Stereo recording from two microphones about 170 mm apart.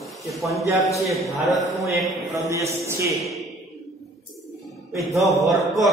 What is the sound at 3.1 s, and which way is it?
Speech, centre (ahead or behind).